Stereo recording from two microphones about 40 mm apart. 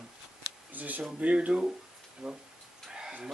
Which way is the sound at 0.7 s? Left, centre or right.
Right.